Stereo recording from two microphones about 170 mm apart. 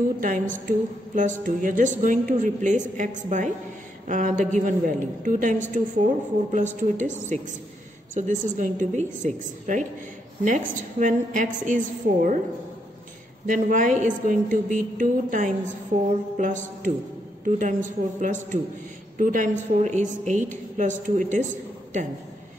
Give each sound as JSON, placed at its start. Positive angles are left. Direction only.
{"t": 0.2, "sound": "a woman's voice", "side_deg": -50}
{"t": 13.5, "sound": "a woman's voice", "side_deg": -50}